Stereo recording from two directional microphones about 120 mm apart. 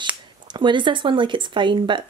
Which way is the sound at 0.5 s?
40° right (ahead or behind).